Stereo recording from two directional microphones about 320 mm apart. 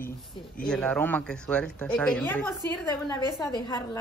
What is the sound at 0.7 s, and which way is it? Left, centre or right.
A woman's voice, centre.